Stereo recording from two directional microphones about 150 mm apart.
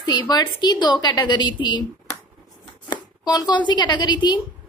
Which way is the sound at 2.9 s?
25° left (ahead or behind).